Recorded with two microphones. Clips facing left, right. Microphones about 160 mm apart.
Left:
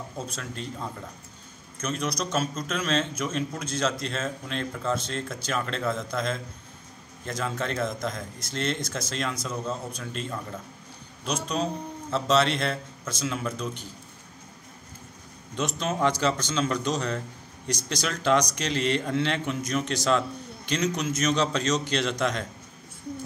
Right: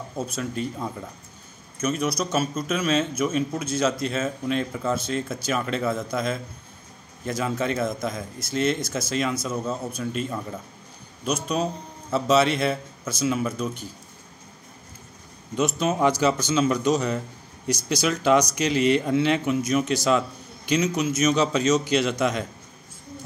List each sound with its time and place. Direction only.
0.3 s a man's voice: 10° right (ahead or behind)
12.1 s a man's voice: 10° right (ahead or behind)
15.5 s a man's voice: 5° right (ahead or behind)